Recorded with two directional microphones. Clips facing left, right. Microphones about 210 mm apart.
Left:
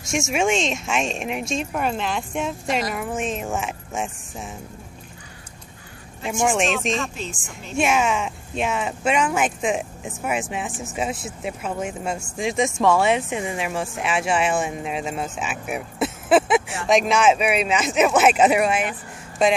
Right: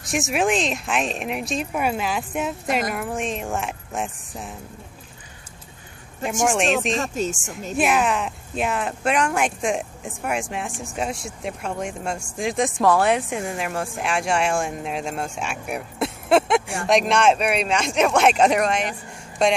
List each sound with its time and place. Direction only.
0.1 s speech: centre (ahead or behind)
6.4 s speech: centre (ahead or behind)
7.0 s speech: 45° right (ahead or behind)
7.7 s speech: centre (ahead or behind)